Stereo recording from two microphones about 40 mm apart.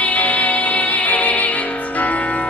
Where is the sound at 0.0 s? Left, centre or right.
Left.